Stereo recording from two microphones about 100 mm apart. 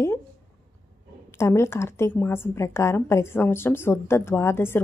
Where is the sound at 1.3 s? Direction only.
25° left (ahead or behind).